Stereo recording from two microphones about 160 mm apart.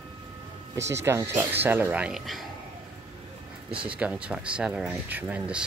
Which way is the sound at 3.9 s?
10° right (ahead or behind).